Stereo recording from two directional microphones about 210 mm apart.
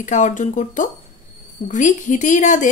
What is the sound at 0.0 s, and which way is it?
Speech, 35° left (ahead or behind).